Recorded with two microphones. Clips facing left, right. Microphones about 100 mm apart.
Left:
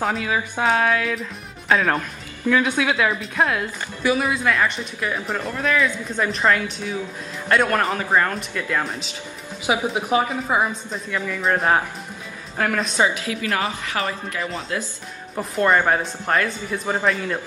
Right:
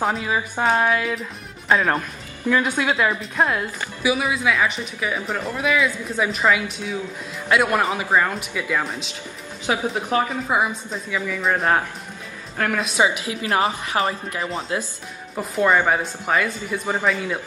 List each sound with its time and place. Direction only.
0.0 s a woman's voice: 5° right (ahead or behind); by 14.9 s 25° right (ahead or behind)
15.3 s a woman's voice: centre (ahead or behind)